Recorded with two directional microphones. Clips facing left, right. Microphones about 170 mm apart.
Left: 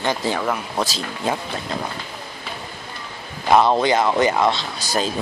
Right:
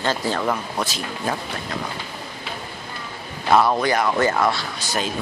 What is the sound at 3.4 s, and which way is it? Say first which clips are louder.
Speech: left 2 dB; 15° left (ahead or behind).